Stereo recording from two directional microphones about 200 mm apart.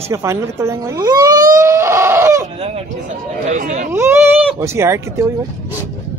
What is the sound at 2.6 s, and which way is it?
Speech, 30° right (ahead or behind).